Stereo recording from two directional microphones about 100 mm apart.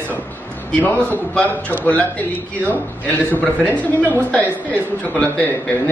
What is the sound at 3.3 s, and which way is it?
A woman's voice, 15° left (ahead or behind).